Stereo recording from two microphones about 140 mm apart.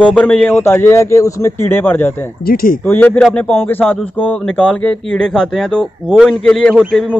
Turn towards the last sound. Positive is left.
turn(degrees=5)  # may be behind; listen again after turning